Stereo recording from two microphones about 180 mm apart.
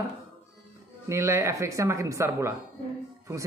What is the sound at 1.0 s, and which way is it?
Speech, 15° right (ahead or behind).